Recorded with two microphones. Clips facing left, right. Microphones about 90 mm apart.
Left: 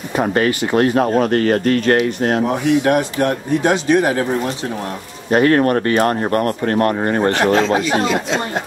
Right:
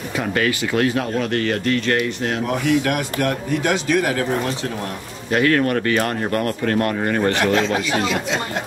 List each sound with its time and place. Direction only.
0.1 s speech: 35° left (ahead or behind)
2.4 s speech: 30° left (ahead or behind)
5.3 s speech: 35° left (ahead or behind)